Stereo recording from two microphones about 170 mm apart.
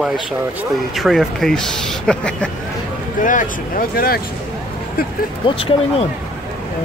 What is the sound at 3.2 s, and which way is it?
Speech, 50° left (ahead or behind).